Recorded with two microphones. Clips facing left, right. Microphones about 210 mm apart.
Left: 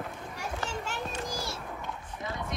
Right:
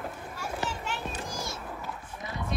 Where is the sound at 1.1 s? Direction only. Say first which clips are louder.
Left 1 dB; 35° left (ahead or behind).